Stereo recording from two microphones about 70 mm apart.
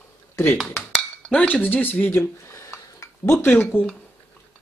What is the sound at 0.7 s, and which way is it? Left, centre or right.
Speech, centre.